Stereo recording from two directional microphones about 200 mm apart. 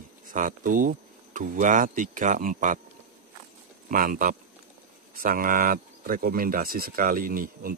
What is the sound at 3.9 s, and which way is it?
Speech, 45° right (ahead or behind).